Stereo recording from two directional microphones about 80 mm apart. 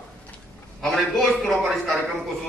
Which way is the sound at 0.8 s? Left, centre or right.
Centre.